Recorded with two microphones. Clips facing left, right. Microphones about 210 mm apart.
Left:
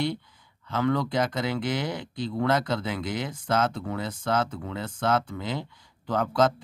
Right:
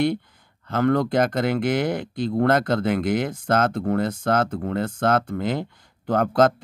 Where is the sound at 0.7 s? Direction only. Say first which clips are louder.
Right 5 dB; 50° right (ahead or behind).